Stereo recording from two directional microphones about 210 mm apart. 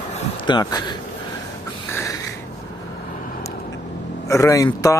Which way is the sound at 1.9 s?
15° left (ahead or behind).